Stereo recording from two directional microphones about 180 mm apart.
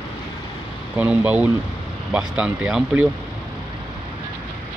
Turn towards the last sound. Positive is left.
turn(degrees=-5)  # may be behind; listen again after turning